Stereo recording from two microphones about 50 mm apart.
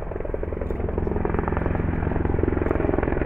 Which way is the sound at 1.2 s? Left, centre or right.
Centre.